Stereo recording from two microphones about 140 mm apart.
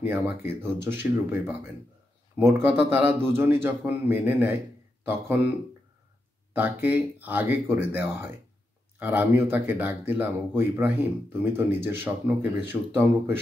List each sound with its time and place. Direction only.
0.0 s speech: 10° right (ahead or behind)
6.5 s speech: 15° right (ahead or behind)